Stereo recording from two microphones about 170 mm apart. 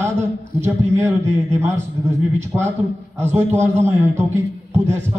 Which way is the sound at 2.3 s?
15° right (ahead or behind).